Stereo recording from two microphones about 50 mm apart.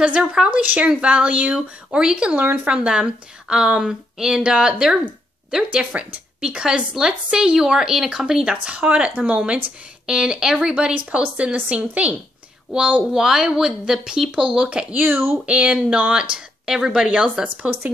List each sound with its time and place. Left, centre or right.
0.0 s a woman's voice: right
0.5 s a woman's voice: right
2.4 s a woman's voice: right; by 4.9 s centre
5.9 s a woman's voice: right
10.0 s a woman's voice: centre
13.1 s a woman's voice: centre
15.0 s speech: right
15.4 s a woman's voice: right